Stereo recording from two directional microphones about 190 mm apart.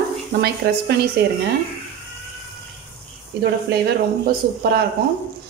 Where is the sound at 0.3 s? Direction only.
60° right (ahead or behind).